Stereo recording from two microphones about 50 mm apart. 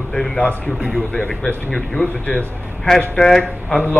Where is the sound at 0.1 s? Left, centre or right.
Centre.